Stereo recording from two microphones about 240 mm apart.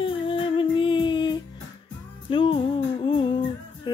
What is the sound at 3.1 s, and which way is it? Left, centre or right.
Humming, left.